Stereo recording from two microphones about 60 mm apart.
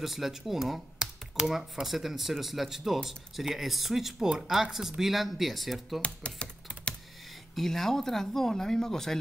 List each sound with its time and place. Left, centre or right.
0.0 s speech: centre
0.9 s speech: centre
6.0 s typing: centre
7.5 s speech: centre